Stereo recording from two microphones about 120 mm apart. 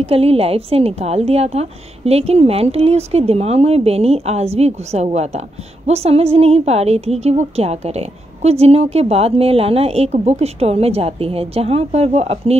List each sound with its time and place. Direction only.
0.0 s a woman's voice: 55° right (ahead or behind)